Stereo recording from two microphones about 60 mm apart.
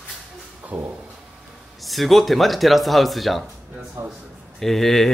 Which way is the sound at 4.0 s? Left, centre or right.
Right.